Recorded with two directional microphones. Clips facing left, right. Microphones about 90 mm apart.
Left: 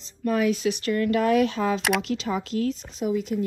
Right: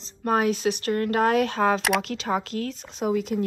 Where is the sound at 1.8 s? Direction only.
Centre (ahead or behind).